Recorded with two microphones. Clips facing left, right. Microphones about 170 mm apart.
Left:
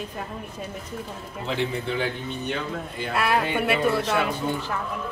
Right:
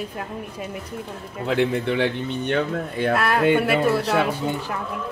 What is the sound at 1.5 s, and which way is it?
A man's voice, 60° right (ahead or behind).